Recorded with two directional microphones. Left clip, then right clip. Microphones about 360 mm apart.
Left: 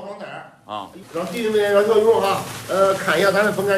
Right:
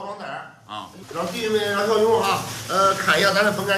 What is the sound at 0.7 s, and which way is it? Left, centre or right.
Speech, centre.